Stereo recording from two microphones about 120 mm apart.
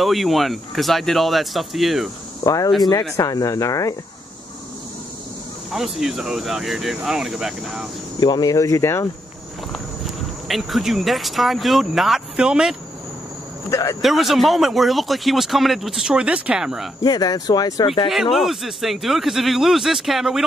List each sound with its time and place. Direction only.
0.0 s speech: centre (ahead or behind)
2.4 s speech: 30° left (ahead or behind)
5.7 s speech: centre (ahead or behind)
8.2 s speech: 35° left (ahead or behind)
10.5 s speech: centre (ahead or behind)
13.7 s speech: 25° left (ahead or behind)
14.0 s speech: centre (ahead or behind)
17.0 s speech: 35° left (ahead or behind)
18.0 s speech: centre (ahead or behind)